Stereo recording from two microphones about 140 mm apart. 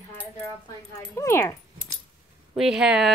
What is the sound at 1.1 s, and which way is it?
Speech, 20° left (ahead or behind).